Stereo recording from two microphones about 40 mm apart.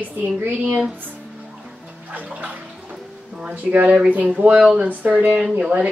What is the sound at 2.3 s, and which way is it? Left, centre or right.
Bathtub, right.